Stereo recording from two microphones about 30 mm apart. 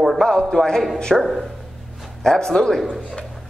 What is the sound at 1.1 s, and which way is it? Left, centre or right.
Speech, centre.